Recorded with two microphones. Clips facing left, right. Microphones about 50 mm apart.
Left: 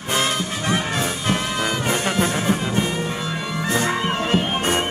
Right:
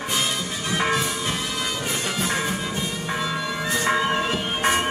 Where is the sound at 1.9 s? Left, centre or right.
Left.